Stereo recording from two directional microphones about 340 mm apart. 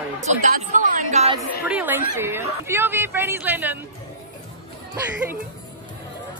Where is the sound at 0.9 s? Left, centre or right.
Centre.